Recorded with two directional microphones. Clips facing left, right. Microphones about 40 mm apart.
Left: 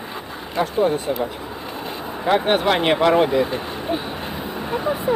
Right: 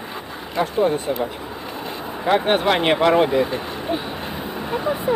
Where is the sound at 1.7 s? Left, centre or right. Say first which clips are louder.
Even; centre.